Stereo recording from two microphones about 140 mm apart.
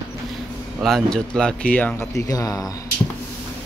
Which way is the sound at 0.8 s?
Centre (ahead or behind).